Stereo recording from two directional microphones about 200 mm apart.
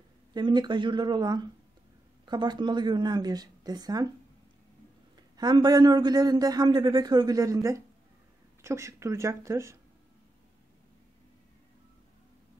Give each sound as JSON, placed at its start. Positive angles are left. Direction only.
{"t": 0.3, "sound": "a man's voice", "side_deg": -20}
{"t": 5.4, "sound": "a man's voice", "side_deg": -20}